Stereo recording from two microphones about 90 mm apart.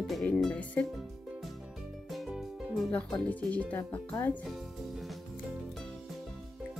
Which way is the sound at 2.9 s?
15° left (ahead or behind).